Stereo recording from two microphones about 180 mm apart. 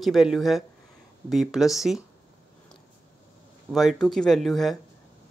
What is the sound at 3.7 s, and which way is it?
Speech, centre (ahead or behind).